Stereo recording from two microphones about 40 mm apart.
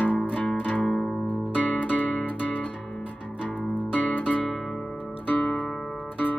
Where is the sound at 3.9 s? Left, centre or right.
Left.